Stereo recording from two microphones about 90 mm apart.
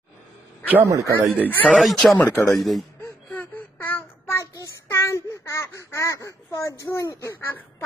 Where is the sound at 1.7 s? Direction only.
Centre (ahead or behind).